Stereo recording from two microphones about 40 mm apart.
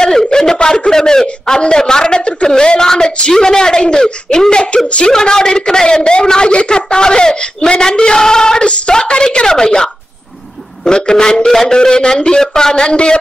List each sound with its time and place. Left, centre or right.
0.0 s a man's voice: centre